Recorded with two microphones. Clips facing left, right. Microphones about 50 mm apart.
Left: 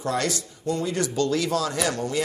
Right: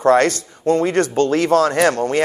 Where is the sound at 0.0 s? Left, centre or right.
Right.